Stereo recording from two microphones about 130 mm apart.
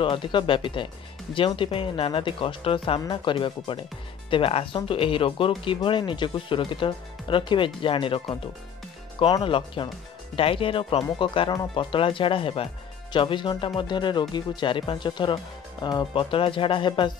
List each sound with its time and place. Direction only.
0.0 s speech: 40° left (ahead or behind)
9.4 s speech: 40° left (ahead or behind)